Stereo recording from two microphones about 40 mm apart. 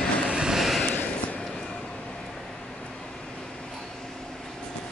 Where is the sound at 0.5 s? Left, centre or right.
Centre.